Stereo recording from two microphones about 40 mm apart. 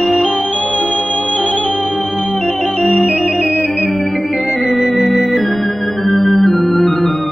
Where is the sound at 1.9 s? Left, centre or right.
Centre.